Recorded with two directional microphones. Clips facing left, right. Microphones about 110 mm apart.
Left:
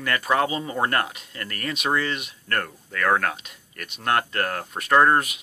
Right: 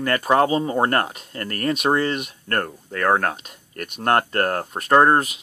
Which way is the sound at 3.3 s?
45° right (ahead or behind).